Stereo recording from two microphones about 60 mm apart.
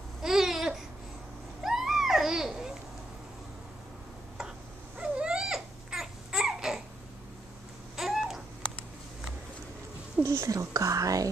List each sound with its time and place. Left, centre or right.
0.2 s babbling: centre
1.6 s a sound: centre
4.9 s baby cry: centre
7.9 s babbling: centre
10.2 s speech: right
10.5 s speech: right